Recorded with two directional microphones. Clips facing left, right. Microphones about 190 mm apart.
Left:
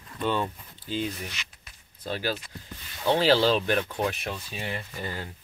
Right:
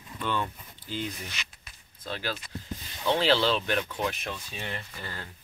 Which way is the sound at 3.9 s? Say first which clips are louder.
Left 3 dB; 30° left (ahead or behind).